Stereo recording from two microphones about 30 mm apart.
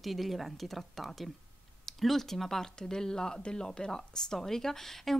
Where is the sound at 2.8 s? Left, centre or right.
Left.